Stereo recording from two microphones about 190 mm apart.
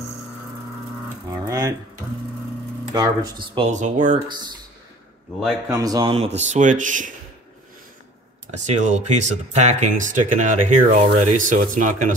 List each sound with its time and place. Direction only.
1.0 s a sound: 20° right (ahead or behind)
2.9 s speech: 20° right (ahead or behind)
3.7 s speech: 40° right (ahead or behind)
5.7 s speech: 20° right (ahead or behind)
6.1 s speech: 35° right (ahead or behind)
8.5 s speech: 40° right (ahead or behind)